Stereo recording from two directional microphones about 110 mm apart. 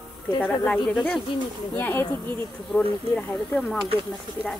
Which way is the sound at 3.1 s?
15° left (ahead or behind).